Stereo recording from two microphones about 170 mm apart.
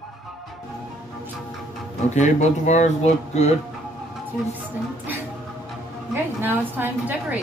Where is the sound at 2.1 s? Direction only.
45° left (ahead or behind).